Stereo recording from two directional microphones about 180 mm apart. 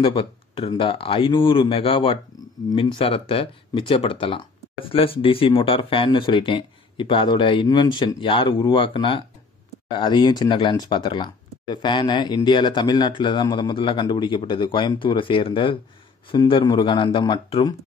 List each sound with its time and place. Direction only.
0.0 s speech: 30° left (ahead or behind)